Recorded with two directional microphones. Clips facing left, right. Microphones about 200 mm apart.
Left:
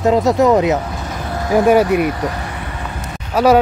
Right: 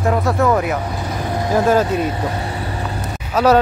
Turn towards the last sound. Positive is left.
turn(degrees=10)  # may be behind; listen again after turning